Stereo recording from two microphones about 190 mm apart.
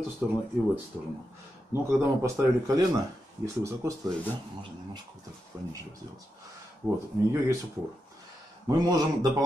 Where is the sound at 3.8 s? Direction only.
15° right (ahead or behind).